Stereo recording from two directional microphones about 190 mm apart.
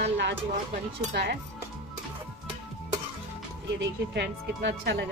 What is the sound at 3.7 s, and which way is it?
Speech, 65° right (ahead or behind).